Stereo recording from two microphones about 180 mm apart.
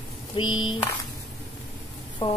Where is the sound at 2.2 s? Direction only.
15° left (ahead or behind).